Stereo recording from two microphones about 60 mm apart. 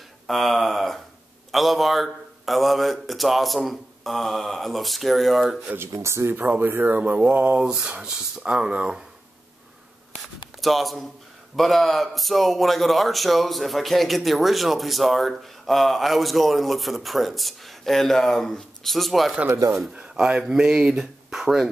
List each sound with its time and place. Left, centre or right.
0.3 s a man's voice: centre
5.8 s speech: right
6.3 s speech: right
7.5 s speech: centre
10.6 s a man's voice: centre
20.0 s speech: centre